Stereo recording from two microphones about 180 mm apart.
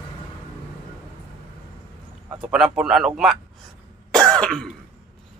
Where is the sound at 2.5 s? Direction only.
5° right (ahead or behind).